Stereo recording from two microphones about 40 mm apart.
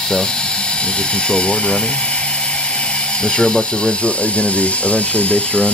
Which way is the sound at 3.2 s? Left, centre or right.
Left.